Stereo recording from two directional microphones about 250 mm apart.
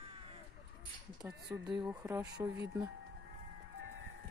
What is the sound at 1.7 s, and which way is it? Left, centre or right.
Speech, centre.